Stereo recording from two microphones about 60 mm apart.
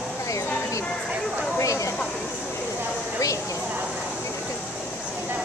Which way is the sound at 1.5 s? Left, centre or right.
Left.